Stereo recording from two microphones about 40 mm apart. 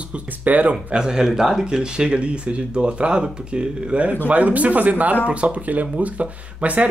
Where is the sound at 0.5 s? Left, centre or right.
Right.